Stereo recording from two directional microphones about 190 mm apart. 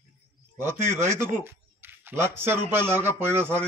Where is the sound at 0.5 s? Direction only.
10° right (ahead or behind).